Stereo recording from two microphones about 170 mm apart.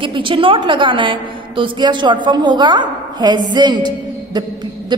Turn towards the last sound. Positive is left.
turn(degrees=-25)  # may be behind; listen again after turning